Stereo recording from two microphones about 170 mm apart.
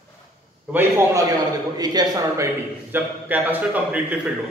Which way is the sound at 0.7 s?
10° right (ahead or behind).